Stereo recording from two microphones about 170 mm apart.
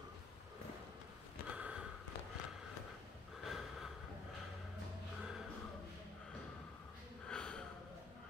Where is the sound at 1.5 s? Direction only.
5° right (ahead or behind).